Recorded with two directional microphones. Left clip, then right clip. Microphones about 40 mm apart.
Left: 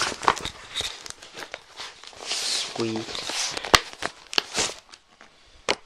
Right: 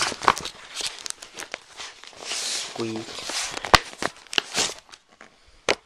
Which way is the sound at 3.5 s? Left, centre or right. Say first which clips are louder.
Right 2 dB; right.